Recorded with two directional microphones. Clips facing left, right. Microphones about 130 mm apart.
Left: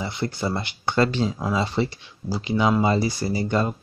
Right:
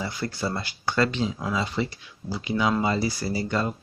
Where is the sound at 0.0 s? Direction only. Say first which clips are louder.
Left 2 dB; 20° left (ahead or behind).